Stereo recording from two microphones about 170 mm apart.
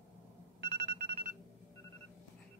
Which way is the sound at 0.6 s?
75° right (ahead or behind).